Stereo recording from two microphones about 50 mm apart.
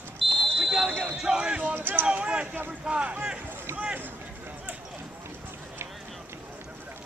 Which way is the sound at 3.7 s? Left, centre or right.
Right.